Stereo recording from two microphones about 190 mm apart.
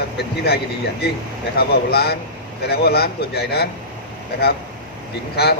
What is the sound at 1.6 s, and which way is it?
Speech, 55° left (ahead or behind).